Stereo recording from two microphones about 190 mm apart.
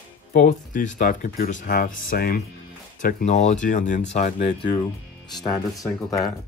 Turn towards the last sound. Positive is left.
turn(degrees=20)  # may be behind; listen again after turning